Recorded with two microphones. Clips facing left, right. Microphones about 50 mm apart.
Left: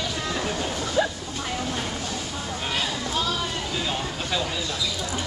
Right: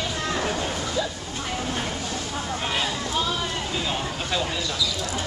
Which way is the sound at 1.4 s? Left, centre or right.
Centre.